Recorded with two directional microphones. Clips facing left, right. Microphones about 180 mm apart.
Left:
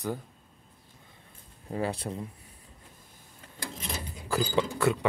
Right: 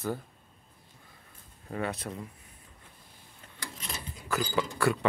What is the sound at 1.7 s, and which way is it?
Speech, 30° left (ahead or behind).